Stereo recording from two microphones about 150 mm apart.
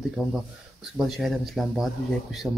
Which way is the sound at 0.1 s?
5° right (ahead or behind).